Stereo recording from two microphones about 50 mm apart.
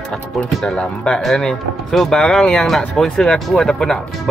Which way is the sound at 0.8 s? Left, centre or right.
Centre.